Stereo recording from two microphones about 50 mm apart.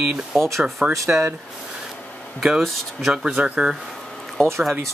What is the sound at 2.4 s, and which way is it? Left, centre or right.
Speech, centre.